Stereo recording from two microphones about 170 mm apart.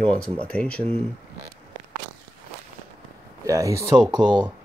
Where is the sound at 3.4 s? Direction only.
20° right (ahead or behind).